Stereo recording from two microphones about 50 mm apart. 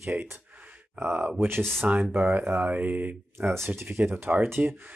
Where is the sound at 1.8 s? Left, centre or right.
Right.